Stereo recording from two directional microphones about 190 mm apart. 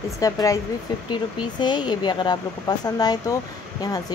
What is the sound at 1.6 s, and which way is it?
Speech, 25° left (ahead or behind).